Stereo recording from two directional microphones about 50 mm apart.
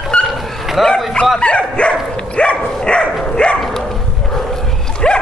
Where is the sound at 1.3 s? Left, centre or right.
Left.